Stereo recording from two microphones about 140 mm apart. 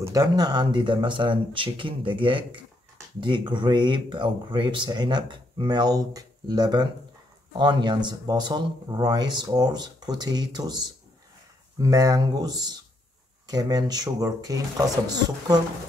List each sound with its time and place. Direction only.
0.0 s speech: 25° right (ahead or behind)
11.8 s speech: 25° right (ahead or behind)